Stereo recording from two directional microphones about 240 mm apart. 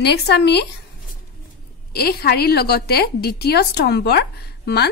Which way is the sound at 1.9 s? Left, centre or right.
Left.